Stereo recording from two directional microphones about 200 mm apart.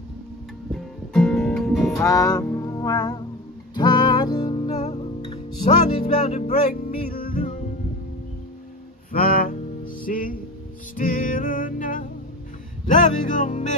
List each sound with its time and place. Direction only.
0.7 s music: centre (ahead or behind)
2.0 s music: 15° left (ahead or behind); by 7.6 s 40° left (ahead or behind)
9.1 s music: 45° left (ahead or behind)